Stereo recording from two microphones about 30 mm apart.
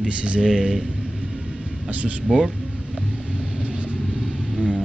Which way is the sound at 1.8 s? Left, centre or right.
Right.